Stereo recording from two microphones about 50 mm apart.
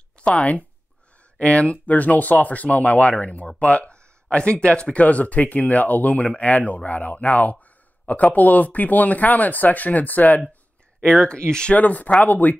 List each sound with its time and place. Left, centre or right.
0.2 s speech: left
11.0 s speech: centre
11.7 s speech: left